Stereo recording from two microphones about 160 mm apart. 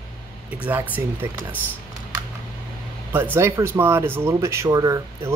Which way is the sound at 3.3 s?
15° right (ahead or behind).